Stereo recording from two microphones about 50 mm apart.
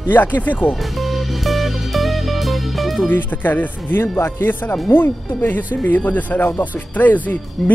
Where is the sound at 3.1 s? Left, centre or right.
Left.